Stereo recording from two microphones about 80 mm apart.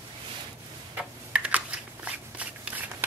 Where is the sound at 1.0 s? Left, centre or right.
Centre.